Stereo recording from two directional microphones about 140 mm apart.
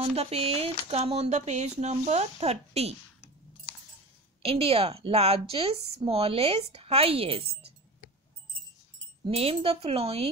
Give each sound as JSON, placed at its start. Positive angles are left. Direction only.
{"t": 0.0, "sound": "a woman's voice", "side_deg": -45}
{"t": 4.4, "sound": "a woman's voice", "side_deg": -45}
{"t": 9.3, "sound": "a woman's voice", "side_deg": -45}